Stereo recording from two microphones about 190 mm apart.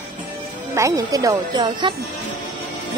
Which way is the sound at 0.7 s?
15° right (ahead or behind).